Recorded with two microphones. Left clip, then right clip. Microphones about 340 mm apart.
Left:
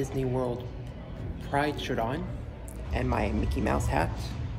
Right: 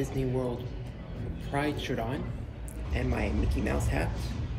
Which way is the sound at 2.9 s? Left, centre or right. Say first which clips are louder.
Left 3 dB; left.